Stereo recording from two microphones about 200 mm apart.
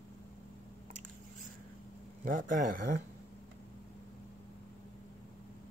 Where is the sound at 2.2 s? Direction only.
45° right (ahead or behind).